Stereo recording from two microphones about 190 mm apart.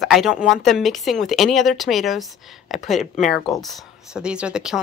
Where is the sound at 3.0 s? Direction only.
40° left (ahead or behind).